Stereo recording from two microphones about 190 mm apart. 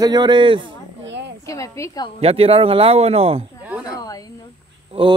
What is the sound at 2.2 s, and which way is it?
Speech, 30° right (ahead or behind).